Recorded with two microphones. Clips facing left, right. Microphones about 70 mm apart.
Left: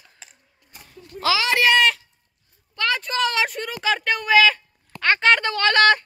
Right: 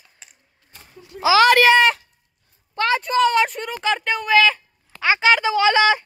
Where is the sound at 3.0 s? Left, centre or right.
Centre.